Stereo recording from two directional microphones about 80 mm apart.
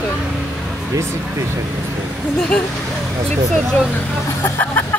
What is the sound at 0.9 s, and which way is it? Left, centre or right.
Speech, right.